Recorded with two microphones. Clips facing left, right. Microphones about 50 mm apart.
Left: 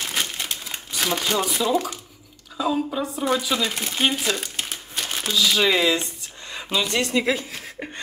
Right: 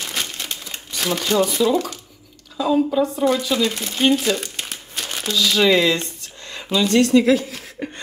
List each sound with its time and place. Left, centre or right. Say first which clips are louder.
0.0 s crumpling: even; centre
2.5 s speech: right 6 dB; centre; by 8.0 s left